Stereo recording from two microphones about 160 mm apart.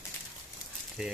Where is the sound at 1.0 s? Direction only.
5° right (ahead or behind).